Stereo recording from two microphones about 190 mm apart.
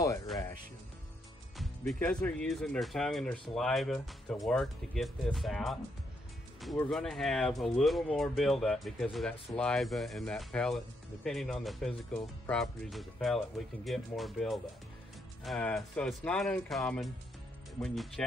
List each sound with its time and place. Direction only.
0.0 s music: 15° left (ahead or behind)
1.6 s speech: 5° left (ahead or behind)
6.8 s speech: 5° left (ahead or behind)